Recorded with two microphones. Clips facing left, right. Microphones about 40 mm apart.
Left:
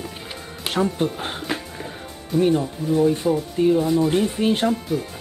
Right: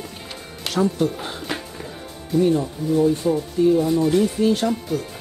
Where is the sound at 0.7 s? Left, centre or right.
Left.